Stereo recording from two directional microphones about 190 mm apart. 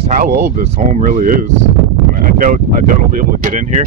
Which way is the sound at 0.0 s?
35° right (ahead or behind).